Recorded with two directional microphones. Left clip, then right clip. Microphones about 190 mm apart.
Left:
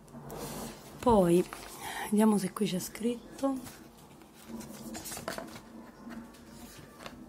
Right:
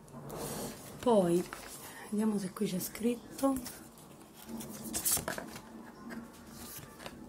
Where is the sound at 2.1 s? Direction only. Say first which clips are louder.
Left 7 dB; 40° left (ahead or behind).